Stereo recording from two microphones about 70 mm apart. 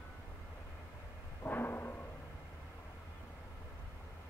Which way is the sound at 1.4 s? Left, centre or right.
Left.